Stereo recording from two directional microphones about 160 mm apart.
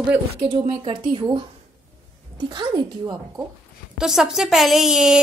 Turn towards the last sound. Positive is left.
turn(degrees=-5)  # may be behind; listen again after turning